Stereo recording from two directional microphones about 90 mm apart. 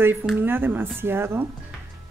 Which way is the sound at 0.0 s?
25° right (ahead or behind).